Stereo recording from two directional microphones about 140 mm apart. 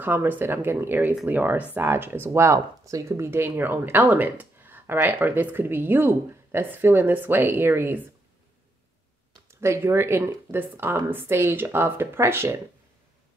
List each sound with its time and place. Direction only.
0.0 s speech: 15° right (ahead or behind)
9.5 s speech: 20° right (ahead or behind)